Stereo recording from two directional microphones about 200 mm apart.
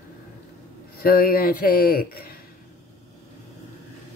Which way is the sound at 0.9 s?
50° left (ahead or behind).